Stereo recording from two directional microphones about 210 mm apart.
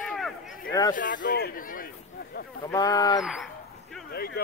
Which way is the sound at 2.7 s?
20° left (ahead or behind).